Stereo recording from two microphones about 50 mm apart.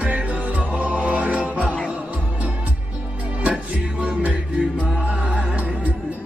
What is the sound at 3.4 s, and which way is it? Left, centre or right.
Music, right.